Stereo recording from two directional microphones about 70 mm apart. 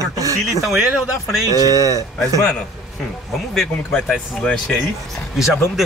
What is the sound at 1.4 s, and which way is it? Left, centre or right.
Speech, right.